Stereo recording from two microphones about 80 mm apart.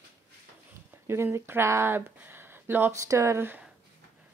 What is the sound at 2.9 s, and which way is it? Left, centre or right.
Speech, right.